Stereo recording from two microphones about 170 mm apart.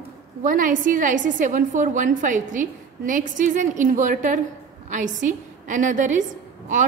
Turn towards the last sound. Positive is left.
turn(degrees=-45)  # may be behind; listen again after turning